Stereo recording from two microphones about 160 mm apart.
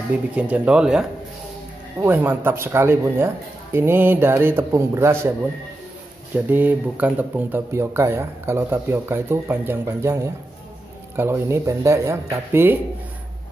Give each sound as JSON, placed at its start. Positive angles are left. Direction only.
{"t": 0.4, "sound": "speech", "side_deg": -5}
{"t": 6.3, "sound": "speech", "side_deg": -10}